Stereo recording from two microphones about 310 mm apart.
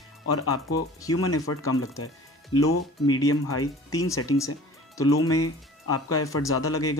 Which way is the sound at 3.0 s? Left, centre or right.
Centre.